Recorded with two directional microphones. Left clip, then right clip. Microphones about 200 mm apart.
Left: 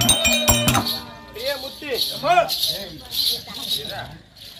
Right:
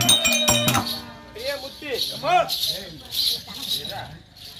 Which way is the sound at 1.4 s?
25° left (ahead or behind).